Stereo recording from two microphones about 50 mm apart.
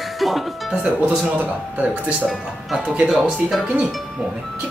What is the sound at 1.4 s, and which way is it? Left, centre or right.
Speech, right.